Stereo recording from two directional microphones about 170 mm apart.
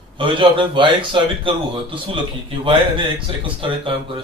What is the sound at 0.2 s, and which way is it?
Speech, 30° right (ahead or behind).